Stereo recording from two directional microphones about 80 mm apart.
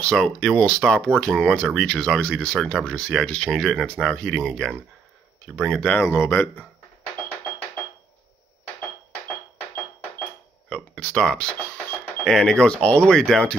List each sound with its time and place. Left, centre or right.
0.0 s speech: centre
5.8 s speech: centre
6.0 s speech: left
10.7 s speech: centre